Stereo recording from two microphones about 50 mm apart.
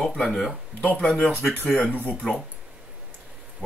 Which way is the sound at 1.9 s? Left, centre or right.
Left.